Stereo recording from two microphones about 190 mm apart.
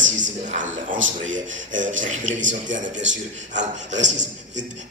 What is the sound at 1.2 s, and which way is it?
A man's voice, 40° right (ahead or behind).